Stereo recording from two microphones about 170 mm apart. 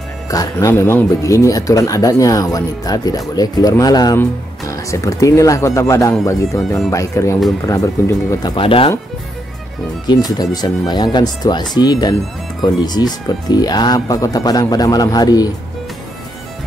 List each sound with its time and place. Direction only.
0.3 s speech: 20° left (ahead or behind)
10.0 s speech: 25° left (ahead or behind)